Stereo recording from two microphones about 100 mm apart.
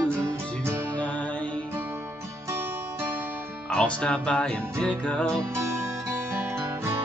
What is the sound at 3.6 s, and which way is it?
Music, 10° left (ahead or behind).